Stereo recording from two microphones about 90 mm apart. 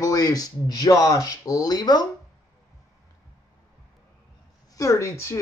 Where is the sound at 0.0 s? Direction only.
45° left (ahead or behind).